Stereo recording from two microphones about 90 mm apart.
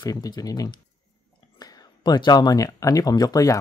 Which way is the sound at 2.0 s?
50° left (ahead or behind).